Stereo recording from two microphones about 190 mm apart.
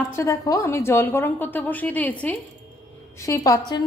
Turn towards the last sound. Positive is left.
turn(degrees=15)  # may be behind; listen again after turning